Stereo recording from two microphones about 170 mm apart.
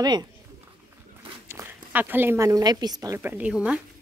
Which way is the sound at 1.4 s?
10° right (ahead or behind).